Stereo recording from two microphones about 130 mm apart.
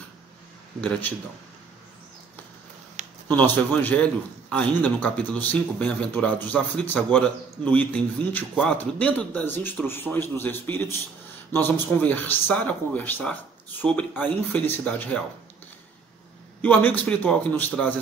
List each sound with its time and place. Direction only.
0.7 s a man's voice: 10° left (ahead or behind)
3.0 s a sound: 60° right (ahead or behind)
3.3 s a man's voice: 15° left (ahead or behind)
16.6 s a man's voice: 15° left (ahead or behind)